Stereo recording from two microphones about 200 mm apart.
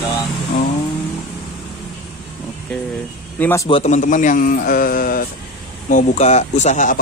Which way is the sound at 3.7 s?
30° left (ahead or behind).